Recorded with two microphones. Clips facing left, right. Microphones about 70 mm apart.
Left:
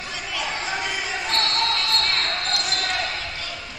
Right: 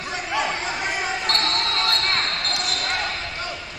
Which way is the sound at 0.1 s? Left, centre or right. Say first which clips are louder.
Right 5 dB; right.